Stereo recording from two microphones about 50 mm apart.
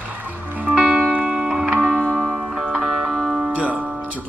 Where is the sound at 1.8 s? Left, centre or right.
Centre.